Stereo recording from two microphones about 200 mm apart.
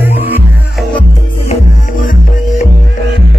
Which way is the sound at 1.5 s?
40° left (ahead or behind).